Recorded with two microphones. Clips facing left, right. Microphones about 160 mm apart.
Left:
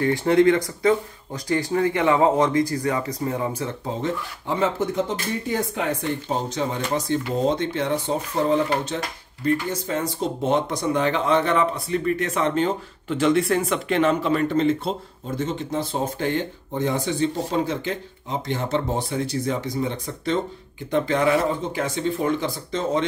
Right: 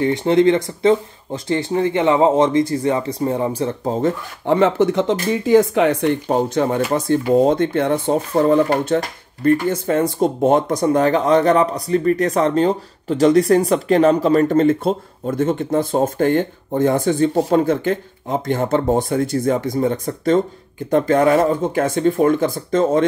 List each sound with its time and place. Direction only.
0.0 s speech: 20° right (ahead or behind); by 4.1 s 40° right (ahead or behind)
4.5 s speech: 70° right (ahead or behind)
6.2 s speech: 55° right (ahead or behind)